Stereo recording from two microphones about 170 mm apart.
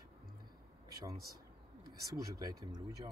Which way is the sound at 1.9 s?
20° right (ahead or behind).